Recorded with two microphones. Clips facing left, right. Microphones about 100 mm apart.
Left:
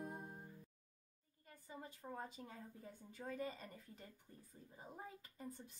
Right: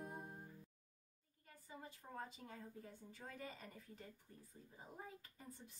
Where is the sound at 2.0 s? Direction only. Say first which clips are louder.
Left 4 dB; 15° left (ahead or behind).